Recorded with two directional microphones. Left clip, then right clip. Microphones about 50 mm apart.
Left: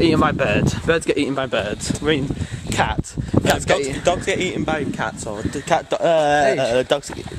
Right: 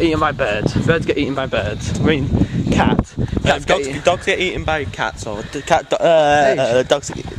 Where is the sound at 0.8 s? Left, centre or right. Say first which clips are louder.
Right 1 dB; centre.